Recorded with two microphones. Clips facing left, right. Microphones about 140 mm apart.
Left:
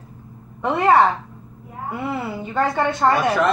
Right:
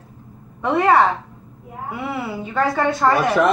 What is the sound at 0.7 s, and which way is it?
Speech, 10° left (ahead or behind).